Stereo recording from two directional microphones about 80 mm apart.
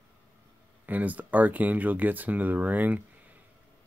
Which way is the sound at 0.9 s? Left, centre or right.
Right.